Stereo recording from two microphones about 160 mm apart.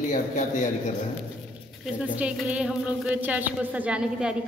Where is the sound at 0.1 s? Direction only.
50° left (ahead or behind).